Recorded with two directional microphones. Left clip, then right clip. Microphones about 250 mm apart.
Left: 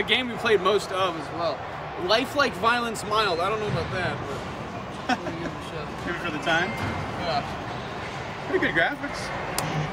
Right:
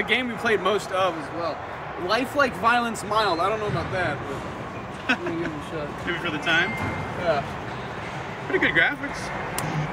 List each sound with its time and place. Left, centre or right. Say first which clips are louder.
0.0 s speech: even; centre
3.1 s speech: right 1 dB; centre
6.2 s speech: right 2 dB; centre
8.5 s speech: right 3 dB; centre
9.6 s music: even; centre